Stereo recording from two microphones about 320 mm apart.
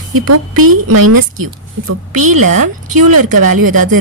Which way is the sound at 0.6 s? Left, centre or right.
Right.